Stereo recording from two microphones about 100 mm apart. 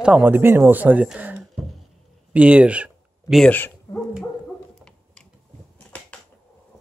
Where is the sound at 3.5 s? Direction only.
20° left (ahead or behind).